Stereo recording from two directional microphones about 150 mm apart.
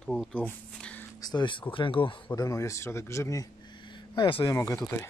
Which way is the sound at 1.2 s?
30° left (ahead or behind).